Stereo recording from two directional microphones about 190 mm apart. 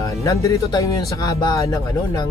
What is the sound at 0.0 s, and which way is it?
Speech, 15° left (ahead or behind).